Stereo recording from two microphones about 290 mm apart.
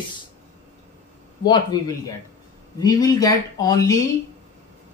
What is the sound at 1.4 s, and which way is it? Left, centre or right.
Speech, centre.